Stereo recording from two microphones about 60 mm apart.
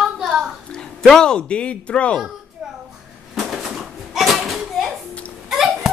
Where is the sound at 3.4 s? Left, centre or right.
Centre.